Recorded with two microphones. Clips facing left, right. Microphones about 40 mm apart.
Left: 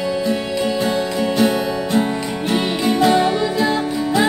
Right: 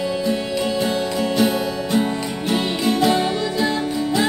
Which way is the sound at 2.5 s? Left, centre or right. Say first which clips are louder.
Left 2 dB; centre.